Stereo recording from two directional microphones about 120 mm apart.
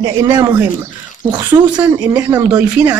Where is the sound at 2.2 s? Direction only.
30° right (ahead or behind).